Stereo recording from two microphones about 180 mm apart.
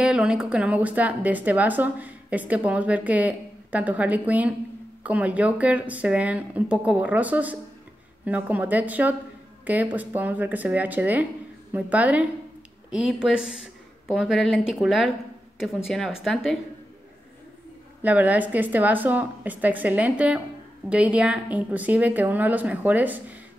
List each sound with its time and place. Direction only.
0.0 s a woman's voice: 5° right (ahead or behind)
18.0 s a woman's voice: 10° right (ahead or behind)